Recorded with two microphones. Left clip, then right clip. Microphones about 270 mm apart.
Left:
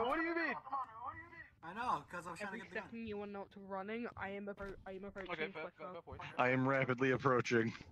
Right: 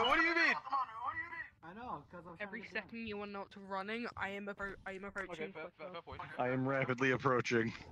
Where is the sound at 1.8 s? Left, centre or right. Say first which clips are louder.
Left 8 dB; left.